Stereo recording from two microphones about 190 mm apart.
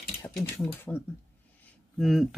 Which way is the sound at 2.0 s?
Centre (ahead or behind).